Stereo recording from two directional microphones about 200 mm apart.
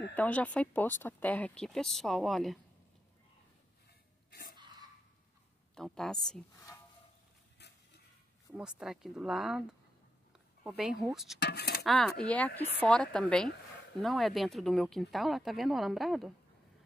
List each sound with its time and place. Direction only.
0.1 s speech: 10° left (ahead or behind)
4.3 s a sound: 50° left (ahead or behind)
5.8 s speech: centre (ahead or behind)
8.5 s speech: 5° right (ahead or behind)
11.3 s speech: 55° left (ahead or behind)
11.8 s speech: centre (ahead or behind)